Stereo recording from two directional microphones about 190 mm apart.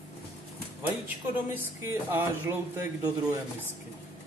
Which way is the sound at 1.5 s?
10° right (ahead or behind).